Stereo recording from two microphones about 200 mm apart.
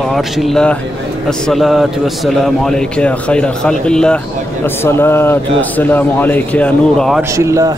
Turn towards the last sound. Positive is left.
turn(degrees=-15)  # may be behind; listen again after turning